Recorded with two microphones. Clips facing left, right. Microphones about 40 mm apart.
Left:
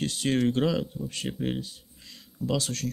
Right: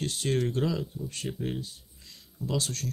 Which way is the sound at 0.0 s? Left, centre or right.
Left.